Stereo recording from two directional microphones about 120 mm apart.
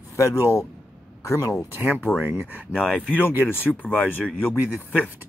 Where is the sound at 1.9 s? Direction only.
20° left (ahead or behind).